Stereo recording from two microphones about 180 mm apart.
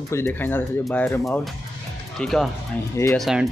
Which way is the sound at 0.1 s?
10° left (ahead or behind).